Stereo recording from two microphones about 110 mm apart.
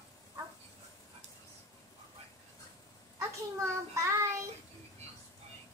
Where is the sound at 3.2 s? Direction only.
25° right (ahead or behind).